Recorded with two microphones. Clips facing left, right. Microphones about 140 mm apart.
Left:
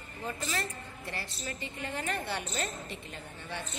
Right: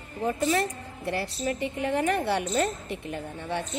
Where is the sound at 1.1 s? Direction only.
70° right (ahead or behind).